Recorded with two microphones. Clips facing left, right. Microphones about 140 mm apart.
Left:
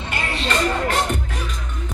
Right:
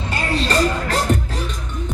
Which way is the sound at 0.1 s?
35° right (ahead or behind).